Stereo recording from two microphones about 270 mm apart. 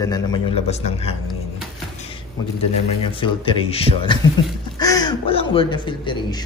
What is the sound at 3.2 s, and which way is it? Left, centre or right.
A man's voice, centre.